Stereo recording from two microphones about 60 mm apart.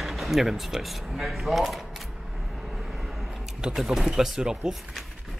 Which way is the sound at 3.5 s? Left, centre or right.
Centre.